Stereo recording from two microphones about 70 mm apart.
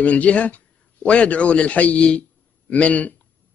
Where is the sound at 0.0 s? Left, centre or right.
Centre.